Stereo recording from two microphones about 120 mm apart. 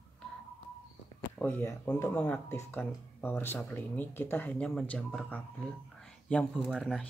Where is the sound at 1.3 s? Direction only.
15° left (ahead or behind).